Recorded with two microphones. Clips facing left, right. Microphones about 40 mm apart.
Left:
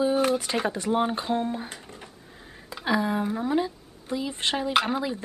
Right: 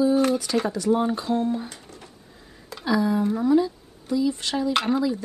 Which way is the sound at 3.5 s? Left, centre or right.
Left.